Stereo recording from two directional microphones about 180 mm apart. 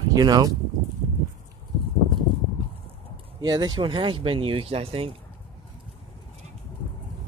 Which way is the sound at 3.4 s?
20° right (ahead or behind).